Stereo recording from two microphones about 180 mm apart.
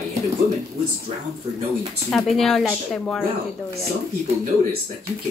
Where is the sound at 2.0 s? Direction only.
Centre (ahead or behind).